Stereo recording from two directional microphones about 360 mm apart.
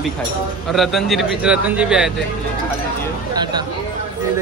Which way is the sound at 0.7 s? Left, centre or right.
Centre.